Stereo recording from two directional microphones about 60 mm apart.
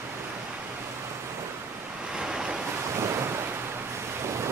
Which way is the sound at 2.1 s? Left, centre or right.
Centre.